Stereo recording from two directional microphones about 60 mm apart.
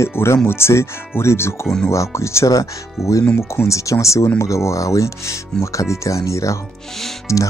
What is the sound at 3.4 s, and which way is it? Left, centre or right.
Speech, left.